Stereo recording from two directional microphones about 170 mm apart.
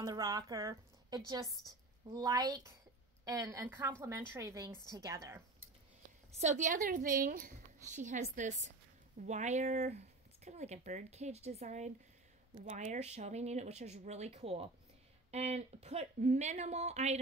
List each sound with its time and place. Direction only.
0.0 s a woman's voice: 20° right (ahead or behind)
6.4 s a woman's voice: 45° right (ahead or behind)